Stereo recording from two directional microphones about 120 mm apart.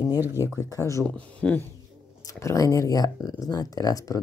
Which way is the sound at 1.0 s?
10° left (ahead or behind).